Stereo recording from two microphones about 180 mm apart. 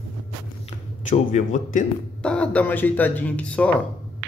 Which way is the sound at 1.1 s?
45° left (ahead or behind).